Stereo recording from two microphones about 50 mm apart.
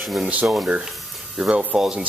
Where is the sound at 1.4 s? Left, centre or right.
Right.